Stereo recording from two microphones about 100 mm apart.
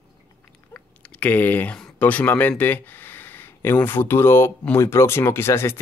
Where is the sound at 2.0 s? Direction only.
15° left (ahead or behind).